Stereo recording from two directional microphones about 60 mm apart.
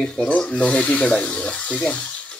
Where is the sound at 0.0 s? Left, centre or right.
Centre.